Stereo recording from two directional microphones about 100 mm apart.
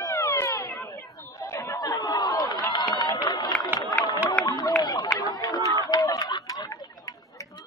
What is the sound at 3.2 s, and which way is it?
Run, 45° left (ahead or behind).